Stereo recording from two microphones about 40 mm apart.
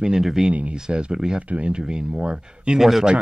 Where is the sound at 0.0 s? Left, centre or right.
Centre.